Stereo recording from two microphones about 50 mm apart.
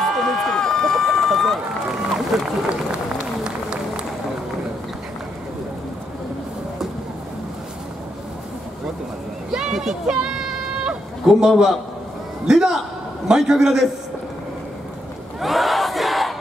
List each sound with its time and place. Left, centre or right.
0.0 s run: centre
3.4 s applause: centre
9.5 s a sound: centre
11.4 s a man's voice: centre
15.4 s crowd: centre